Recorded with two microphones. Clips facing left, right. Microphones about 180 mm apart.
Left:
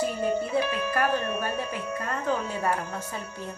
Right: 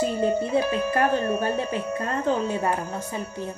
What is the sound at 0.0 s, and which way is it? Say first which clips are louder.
Music: right 4 dB; 25° right (ahead or behind).